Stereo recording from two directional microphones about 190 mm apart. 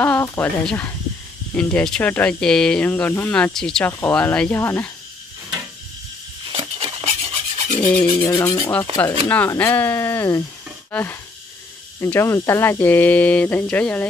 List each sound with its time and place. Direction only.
0.0 s speech: 10° left (ahead or behind)
6.5 s filing: 30° right (ahead or behind)
7.8 s filing: 25° left (ahead or behind)
9.3 s speech: 10° left (ahead or behind)
10.9 s a sound: 10° left (ahead or behind)
12.0 s speech: 15° left (ahead or behind)